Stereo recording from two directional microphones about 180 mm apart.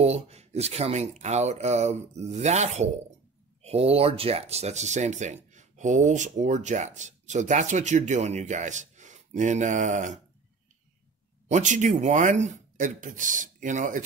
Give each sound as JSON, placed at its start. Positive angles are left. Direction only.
{"t": 0.0, "sound": "speech", "side_deg": -35}
{"t": 11.5, "sound": "speech", "side_deg": -45}